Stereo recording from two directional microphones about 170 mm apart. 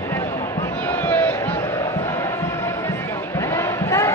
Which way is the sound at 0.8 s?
10° left (ahead or behind).